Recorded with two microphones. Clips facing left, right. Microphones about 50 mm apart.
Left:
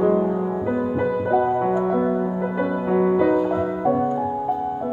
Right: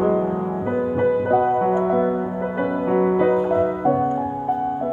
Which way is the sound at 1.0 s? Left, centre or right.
Right.